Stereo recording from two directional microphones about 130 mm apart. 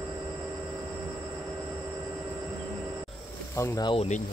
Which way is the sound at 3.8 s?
40° left (ahead or behind).